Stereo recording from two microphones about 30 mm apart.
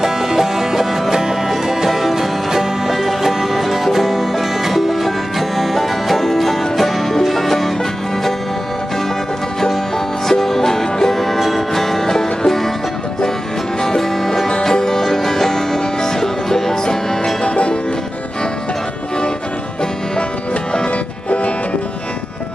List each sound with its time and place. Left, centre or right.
0.0 s music: centre
10.2 s music: centre
13.7 s music: centre
17.4 s music: left
21.3 s music: left